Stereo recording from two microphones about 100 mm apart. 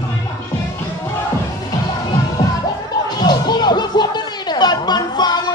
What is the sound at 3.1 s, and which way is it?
Music, 45° left (ahead or behind).